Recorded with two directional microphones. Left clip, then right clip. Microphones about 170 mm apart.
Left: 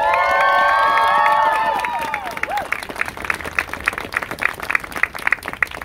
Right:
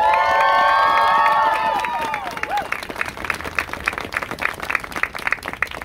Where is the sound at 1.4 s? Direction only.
70° left (ahead or behind).